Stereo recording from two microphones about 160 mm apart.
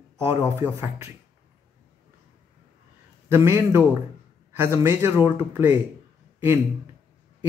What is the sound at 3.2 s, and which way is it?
A man's voice, 15° right (ahead or behind).